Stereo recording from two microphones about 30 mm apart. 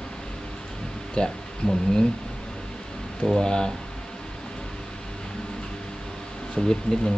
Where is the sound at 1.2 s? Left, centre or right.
Left.